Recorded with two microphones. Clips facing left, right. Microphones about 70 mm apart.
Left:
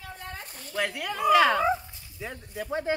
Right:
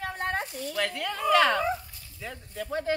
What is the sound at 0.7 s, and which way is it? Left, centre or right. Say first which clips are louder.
Speech: left 2 dB; centre.